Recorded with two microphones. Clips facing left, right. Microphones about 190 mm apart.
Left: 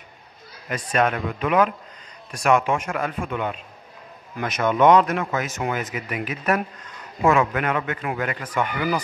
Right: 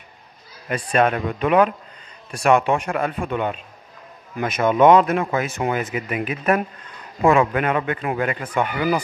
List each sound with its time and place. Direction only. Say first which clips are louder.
0.7 s a man's voice: right 3 dB; 30° right (ahead or behind)